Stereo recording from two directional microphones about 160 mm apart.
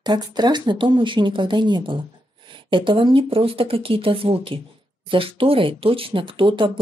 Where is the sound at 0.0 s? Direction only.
25° right (ahead or behind).